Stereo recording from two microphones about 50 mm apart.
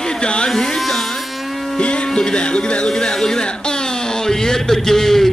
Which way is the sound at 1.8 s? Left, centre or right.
Left.